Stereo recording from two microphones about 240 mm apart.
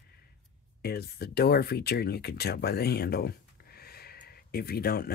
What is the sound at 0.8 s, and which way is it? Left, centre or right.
Speech, left.